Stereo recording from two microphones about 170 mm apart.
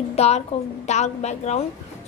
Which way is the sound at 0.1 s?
40° left (ahead or behind).